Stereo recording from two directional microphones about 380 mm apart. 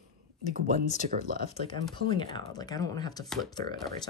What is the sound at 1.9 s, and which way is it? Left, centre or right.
Speech, centre.